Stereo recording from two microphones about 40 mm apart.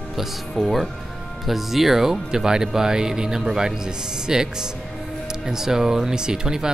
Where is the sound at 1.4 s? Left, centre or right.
Centre.